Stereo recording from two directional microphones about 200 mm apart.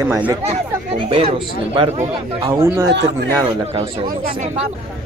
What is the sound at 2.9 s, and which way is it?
Speech, 60° right (ahead or behind).